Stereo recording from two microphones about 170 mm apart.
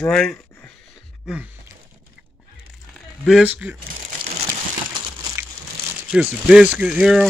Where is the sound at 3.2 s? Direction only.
5° right (ahead or behind).